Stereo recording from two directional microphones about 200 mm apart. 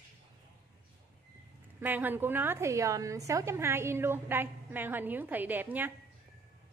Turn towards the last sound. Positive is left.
turn(degrees=-10)  # may be behind; listen again after turning